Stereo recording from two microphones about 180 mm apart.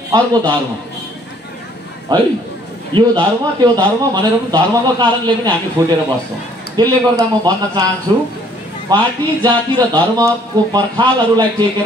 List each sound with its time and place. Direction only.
0.1 s a man's voice: 25° right (ahead or behind)
2.1 s a man's voice: 20° right (ahead or behind)